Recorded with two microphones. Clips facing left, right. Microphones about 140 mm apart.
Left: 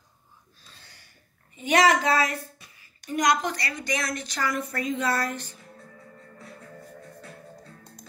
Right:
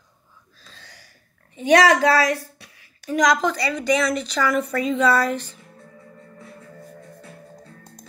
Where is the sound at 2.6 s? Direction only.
75° right (ahead or behind).